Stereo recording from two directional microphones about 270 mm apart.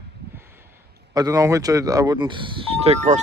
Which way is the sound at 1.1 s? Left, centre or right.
Centre.